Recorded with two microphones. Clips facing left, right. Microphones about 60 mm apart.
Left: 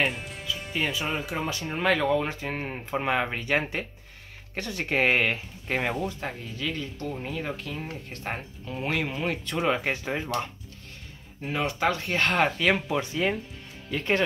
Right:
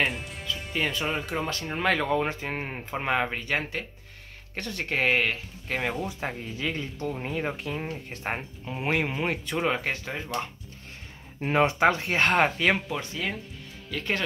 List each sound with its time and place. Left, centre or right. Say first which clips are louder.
0.0 s speech: even; centre
6.0 s speech: even; centre
9.5 s speech: left 3 dB; centre
11.5 s speech: right 5 dB; right
12.0 s speech: right 1 dB; centre
12.8 s speech: left 5 dB; centre